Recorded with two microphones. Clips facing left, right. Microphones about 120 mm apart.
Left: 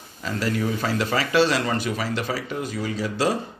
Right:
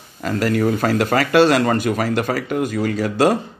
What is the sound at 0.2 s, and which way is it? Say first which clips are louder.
Speech: right 7 dB; 55° right (ahead or behind).